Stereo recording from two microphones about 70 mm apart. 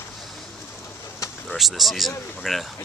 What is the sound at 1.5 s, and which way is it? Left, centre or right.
Speech, centre.